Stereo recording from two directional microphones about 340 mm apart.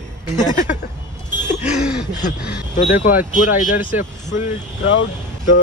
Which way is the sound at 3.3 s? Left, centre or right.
Left.